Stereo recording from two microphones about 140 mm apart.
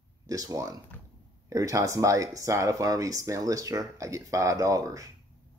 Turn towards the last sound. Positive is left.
turn(degrees=-25)  # may be behind; listen again after turning